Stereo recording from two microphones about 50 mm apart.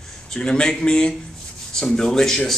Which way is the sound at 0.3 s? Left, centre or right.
Centre.